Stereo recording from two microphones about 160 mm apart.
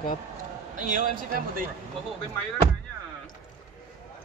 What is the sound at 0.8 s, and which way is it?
Speech, 55° right (ahead or behind).